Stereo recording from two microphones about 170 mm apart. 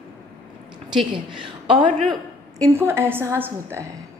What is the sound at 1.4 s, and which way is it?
Speech, 30° right (ahead or behind).